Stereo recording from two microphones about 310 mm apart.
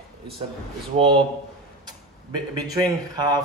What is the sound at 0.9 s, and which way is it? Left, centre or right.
Speech, centre.